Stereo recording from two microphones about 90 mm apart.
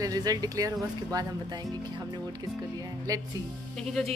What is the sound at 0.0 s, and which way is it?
Speech, 45° right (ahead or behind).